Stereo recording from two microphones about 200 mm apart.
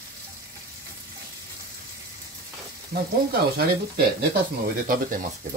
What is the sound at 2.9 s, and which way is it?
Frying, 45° right (ahead or behind).